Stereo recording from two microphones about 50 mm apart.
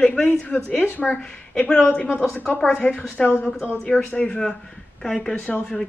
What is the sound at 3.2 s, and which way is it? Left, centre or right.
Speech, centre.